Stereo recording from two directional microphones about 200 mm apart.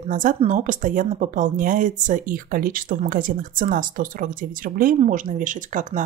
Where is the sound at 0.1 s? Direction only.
40° right (ahead or behind).